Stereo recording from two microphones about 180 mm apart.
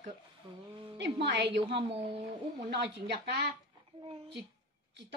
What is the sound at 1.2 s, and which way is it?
Speech, 70° right (ahead or behind).